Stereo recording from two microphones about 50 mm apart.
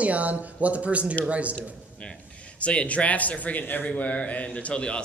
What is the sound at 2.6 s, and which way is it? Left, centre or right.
Speech, left.